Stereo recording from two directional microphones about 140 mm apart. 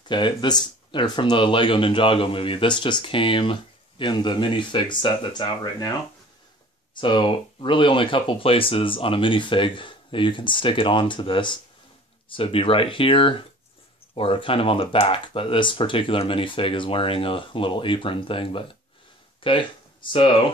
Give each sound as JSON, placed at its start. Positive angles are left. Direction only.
{"t": 0.1, "sound": "speech", "side_deg": 35}
{"t": 7.0, "sound": "speech", "side_deg": 35}